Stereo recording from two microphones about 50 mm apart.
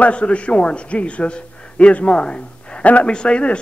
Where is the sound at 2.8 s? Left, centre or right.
Left.